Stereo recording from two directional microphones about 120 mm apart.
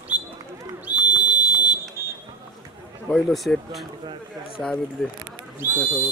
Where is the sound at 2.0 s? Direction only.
25° right (ahead or behind).